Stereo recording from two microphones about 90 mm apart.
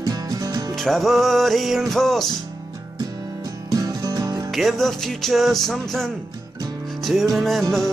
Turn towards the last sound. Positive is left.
turn(degrees=0)  # may be behind; listen again after turning